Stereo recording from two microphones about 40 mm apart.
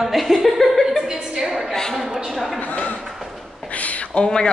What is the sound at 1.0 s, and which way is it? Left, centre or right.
A woman's voice, centre.